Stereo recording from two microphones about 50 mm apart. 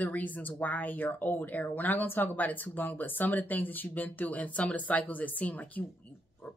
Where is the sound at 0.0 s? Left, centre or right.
Left.